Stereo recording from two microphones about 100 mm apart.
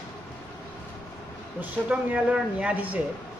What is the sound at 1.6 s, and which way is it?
Speech, 15° right (ahead or behind).